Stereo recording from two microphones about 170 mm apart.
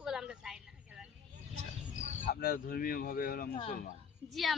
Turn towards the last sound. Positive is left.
turn(degrees=0)  # may be behind; listen again after turning